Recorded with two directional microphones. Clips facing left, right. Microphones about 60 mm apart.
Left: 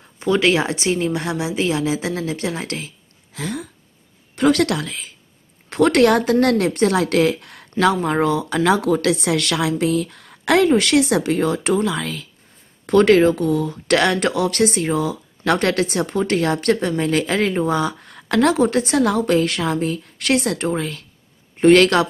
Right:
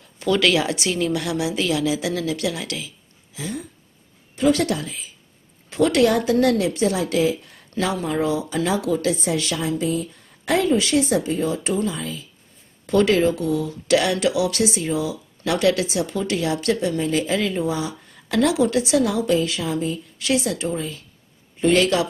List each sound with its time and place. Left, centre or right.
0.2 s a woman's voice: left
3.3 s speech: left
5.7 s speech: left
12.8 s speech: left